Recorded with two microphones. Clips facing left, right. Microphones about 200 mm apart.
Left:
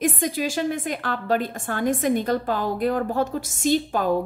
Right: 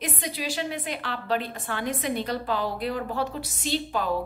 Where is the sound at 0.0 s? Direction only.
45° left (ahead or behind).